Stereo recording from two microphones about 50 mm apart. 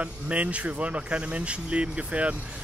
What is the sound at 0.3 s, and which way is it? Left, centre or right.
Speech, right.